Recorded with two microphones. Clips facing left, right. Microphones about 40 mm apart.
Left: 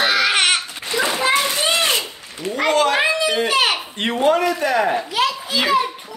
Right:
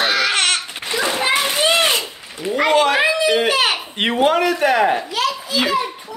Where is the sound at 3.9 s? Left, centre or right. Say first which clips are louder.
Right 2 dB; right.